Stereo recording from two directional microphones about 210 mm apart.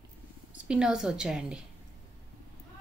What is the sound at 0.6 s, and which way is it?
Speech, 5° right (ahead or behind).